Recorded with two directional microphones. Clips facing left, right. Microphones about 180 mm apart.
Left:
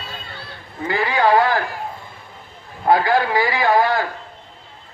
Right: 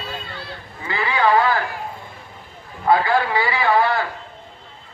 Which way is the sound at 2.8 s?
40° left (ahead or behind).